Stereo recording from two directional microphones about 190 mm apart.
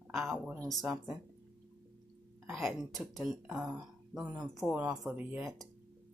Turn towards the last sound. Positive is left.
turn(degrees=-10)  # may be behind; listen again after turning